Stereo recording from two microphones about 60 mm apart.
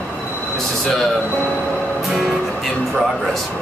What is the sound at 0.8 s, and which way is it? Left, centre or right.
Speech, centre.